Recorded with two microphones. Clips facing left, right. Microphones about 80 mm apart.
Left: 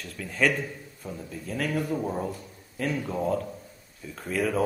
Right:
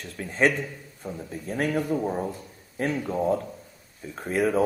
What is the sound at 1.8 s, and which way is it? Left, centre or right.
Speech, centre.